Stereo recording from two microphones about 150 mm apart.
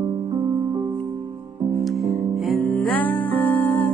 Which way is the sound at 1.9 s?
Centre (ahead or behind).